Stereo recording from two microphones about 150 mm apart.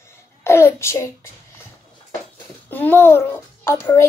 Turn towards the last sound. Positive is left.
turn(degrees=20)  # may be behind; listen again after turning